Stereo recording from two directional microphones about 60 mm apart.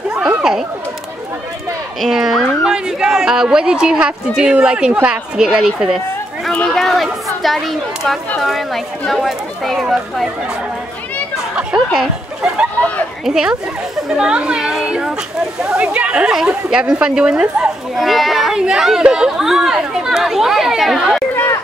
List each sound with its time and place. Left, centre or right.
0.4 s speech: centre
2.0 s speech: centre
6.7 s speech: centre
11.5 s speech: centre
17.9 s speech: centre